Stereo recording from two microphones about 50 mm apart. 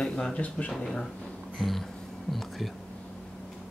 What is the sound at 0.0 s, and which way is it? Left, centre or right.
Speech, centre.